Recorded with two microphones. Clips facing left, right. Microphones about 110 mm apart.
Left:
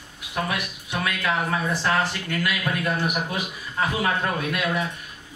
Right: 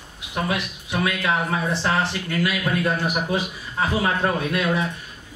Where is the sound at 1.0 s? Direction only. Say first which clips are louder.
Right 2 dB; 25° right (ahead or behind).